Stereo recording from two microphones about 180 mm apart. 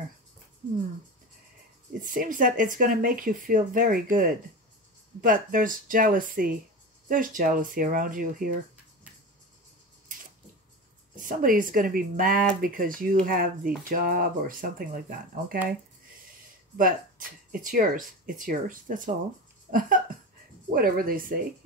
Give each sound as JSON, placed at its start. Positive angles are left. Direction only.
{"t": 2.0, "sound": "speech", "side_deg": -50}
{"t": 11.1, "sound": "speech", "side_deg": -50}
{"t": 16.7, "sound": "speech", "side_deg": -50}